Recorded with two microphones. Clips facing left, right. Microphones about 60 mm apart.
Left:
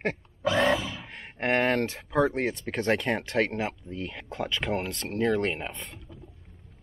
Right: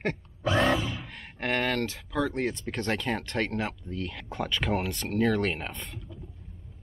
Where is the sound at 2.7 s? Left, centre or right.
Left.